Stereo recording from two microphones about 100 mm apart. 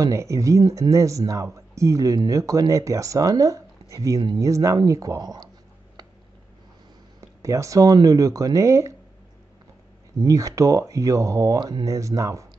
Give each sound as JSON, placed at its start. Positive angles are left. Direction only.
{"t": 0.0, "sound": "speech", "side_deg": -30}
{"t": 7.2, "sound": "speech", "side_deg": -30}
{"t": 10.2, "sound": "speech", "side_deg": -35}